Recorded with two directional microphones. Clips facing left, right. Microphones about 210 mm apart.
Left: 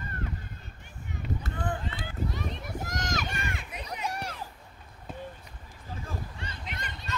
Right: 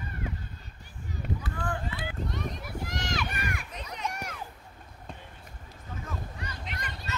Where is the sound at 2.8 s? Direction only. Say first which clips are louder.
Even; 45° left (ahead or behind).